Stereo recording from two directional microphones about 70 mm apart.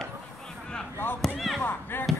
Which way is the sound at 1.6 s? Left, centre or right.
Left.